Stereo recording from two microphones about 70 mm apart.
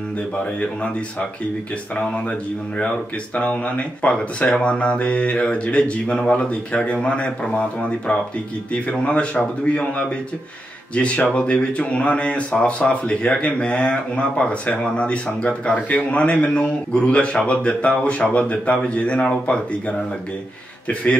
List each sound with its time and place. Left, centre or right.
3.3 s a man's voice: centre